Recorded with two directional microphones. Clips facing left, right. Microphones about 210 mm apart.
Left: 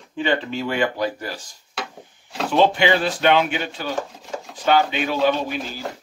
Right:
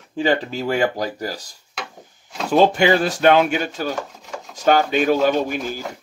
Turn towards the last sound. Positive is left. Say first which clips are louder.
# right 4 dB
turn(degrees=-45)  # may be behind; listen again after turning